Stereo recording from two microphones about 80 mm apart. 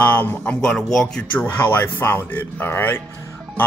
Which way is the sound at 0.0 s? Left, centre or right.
Left.